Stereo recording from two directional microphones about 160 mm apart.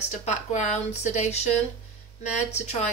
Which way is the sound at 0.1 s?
45° left (ahead or behind).